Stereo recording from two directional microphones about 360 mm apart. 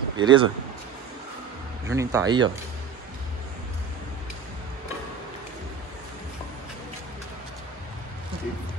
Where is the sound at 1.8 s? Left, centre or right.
Centre.